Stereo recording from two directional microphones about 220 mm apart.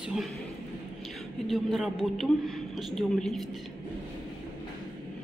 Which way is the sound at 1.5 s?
Centre (ahead or behind).